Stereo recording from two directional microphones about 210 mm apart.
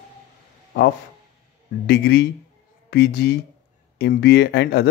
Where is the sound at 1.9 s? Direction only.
50° left (ahead or behind).